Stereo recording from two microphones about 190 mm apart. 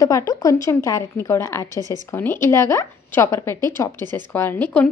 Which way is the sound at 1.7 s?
20° right (ahead or behind).